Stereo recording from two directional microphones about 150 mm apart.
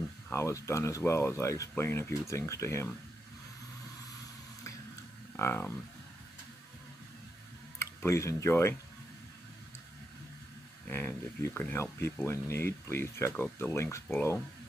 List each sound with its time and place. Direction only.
0.3 s speech: 20° left (ahead or behind)
5.3 s speech: 15° left (ahead or behind)
7.8 s speech: 20° left (ahead or behind)
10.9 s speech: 15° left (ahead or behind)